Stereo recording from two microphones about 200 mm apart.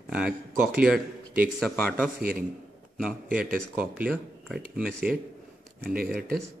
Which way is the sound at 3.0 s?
5° right (ahead or behind).